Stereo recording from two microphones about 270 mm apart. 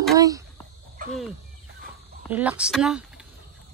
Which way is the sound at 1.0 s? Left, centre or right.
Right.